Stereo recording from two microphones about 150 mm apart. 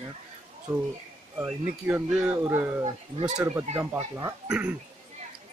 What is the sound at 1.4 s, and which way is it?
Speech, 10° right (ahead or behind).